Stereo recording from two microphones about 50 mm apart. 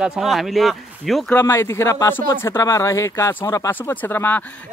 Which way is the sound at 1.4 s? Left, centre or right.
Left.